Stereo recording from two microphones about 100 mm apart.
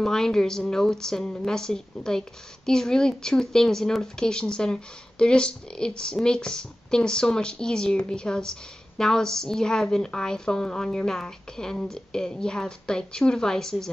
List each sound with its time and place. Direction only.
0.0 s a woman's voice: 5° left (ahead or behind)